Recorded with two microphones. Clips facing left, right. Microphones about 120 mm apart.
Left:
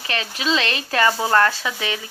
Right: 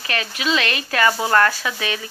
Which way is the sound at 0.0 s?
25° left (ahead or behind).